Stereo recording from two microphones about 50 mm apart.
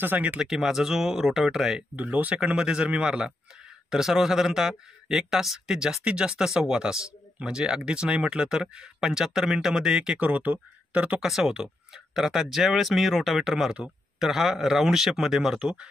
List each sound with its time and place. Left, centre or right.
0.4 s speech: centre
2.0 s speech: right; by 10.1 s centre
10.1 s speech: right
11.1 s speech: centre